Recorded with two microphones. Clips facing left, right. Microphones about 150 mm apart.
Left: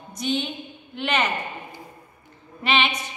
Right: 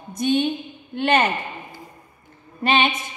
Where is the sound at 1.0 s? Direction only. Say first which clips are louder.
Right 6 dB; 50° right (ahead or behind).